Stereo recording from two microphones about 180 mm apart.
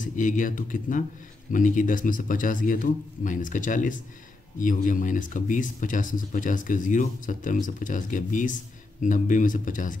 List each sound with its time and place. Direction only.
0.0 s speech: 45° left (ahead or behind)